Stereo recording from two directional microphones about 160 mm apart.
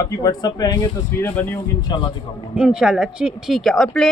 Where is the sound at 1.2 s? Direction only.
10° left (ahead or behind).